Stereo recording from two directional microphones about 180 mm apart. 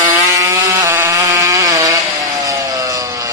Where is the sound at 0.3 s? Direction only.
20° right (ahead or behind).